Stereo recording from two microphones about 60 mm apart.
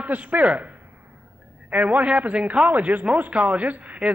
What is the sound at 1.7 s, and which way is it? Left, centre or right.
A man's voice, right.